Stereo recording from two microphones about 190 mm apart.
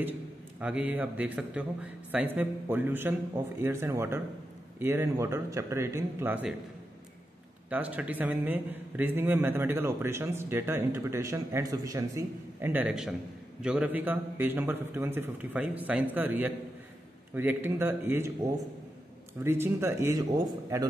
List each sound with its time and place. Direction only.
0.6 s a man's voice: 5° right (ahead or behind)
7.7 s a man's voice: 10° right (ahead or behind)
19.4 s a man's voice: 10° right (ahead or behind)